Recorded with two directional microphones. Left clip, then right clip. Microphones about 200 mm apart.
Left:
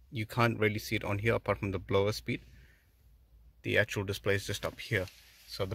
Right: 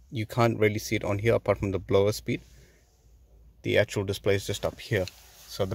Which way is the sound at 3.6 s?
15° right (ahead or behind).